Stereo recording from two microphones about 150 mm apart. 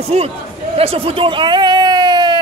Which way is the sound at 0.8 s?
40° right (ahead or behind).